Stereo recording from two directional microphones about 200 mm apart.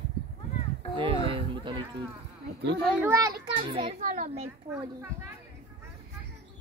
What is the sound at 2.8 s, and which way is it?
Speech, 10° right (ahead or behind).